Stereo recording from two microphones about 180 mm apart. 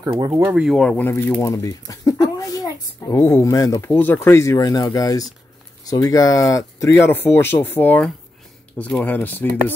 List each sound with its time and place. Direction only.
0.1 s speech: 20° right (ahead or behind); by 9.5 s 10° left (ahead or behind)